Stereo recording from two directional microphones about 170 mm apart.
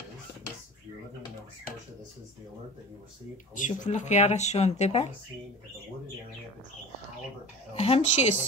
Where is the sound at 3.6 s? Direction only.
45° left (ahead or behind).